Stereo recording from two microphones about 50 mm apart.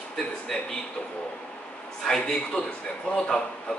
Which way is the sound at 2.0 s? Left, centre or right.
Centre.